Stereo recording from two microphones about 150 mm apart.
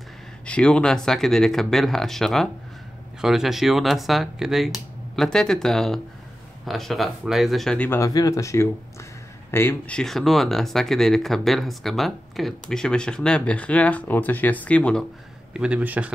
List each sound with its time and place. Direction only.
0.5 s speech: 5° left (ahead or behind)
8.0 s speech: 20° left (ahead or behind)
15.5 s speech: 5° right (ahead or behind)